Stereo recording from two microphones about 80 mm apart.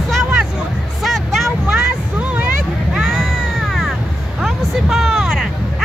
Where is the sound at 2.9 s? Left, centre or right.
Centre.